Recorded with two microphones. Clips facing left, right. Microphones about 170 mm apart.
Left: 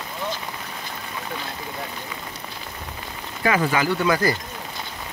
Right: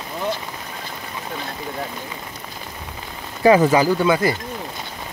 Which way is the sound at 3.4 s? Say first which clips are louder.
Right 8 dB; 25° right (ahead or behind).